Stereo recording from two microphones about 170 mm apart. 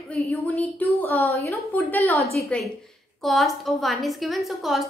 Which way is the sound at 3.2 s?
Centre (ahead or behind).